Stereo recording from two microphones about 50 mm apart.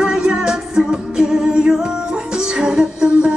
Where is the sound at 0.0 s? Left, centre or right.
Centre.